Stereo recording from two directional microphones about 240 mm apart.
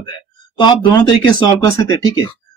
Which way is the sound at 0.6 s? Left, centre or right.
Centre.